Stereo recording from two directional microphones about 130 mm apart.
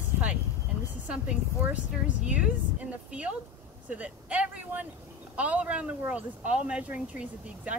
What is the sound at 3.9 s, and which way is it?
A woman's voice, 10° right (ahead or behind).